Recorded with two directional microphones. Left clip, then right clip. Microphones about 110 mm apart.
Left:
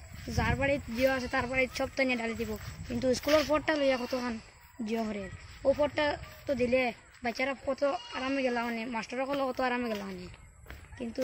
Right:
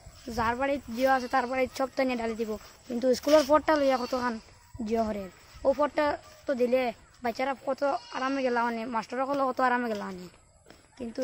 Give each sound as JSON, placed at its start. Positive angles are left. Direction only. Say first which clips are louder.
{"t": 0.4, "sound": "speech", "louder": "right 2 dB", "side_deg": -50}
{"t": 1.1, "sound": "speech", "louder": "right 4 dB", "side_deg": -55}
{"t": 2.2, "sound": "speech", "louder": "right 3 dB", "side_deg": -50}
{"t": 3.0, "sound": "speech", "louder": "right 4 dB", "side_deg": -90}
{"t": 3.3, "sound": "speech", "louder": "right 5 dB", "side_deg": -35}
{"t": 3.5, "sound": "speech", "louder": "right 5 dB", "side_deg": -65}
{"t": 4.8, "sound": "speech", "louder": "right 5 dB", "side_deg": -90}